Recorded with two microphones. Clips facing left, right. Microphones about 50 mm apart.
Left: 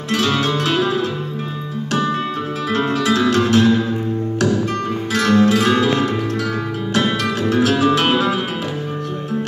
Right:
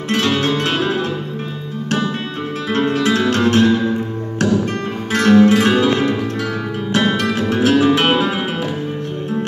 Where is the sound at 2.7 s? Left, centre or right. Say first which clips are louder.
Right 2 dB; right.